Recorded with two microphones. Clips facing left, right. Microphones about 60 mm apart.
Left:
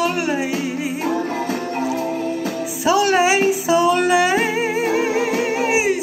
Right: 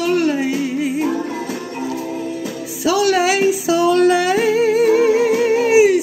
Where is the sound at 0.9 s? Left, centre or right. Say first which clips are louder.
Right 1 dB; left.